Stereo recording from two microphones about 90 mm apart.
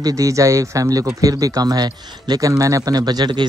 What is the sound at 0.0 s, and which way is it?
Speech, 40° right (ahead or behind).